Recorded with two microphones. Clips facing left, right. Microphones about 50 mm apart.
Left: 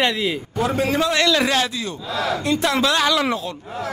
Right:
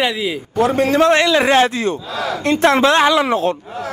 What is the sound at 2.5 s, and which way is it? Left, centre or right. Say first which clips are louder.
Speech: right 8 dB; right.